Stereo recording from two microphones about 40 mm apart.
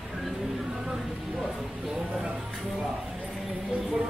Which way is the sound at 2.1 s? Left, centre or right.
Right.